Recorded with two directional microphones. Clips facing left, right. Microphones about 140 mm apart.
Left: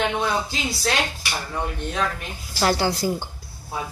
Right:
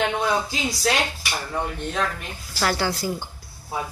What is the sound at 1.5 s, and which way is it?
Speech, centre (ahead or behind).